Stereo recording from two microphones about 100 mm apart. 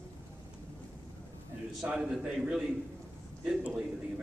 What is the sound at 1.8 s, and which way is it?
A man's voice, 5° right (ahead or behind).